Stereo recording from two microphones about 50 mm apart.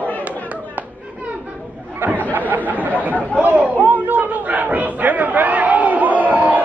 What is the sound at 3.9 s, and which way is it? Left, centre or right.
Crowd, right.